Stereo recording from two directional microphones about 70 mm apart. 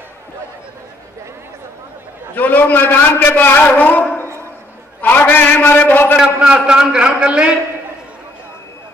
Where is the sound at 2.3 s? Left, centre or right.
Left.